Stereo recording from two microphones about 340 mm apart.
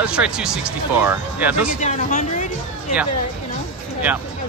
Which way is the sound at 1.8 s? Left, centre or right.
Left.